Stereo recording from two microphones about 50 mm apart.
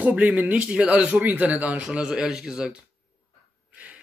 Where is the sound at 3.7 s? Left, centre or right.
Right.